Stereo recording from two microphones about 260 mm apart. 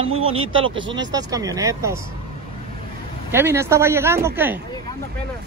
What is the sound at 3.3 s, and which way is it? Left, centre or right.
Speech, centre.